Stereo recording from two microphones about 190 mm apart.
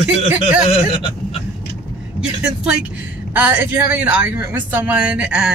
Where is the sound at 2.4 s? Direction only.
5° right (ahead or behind).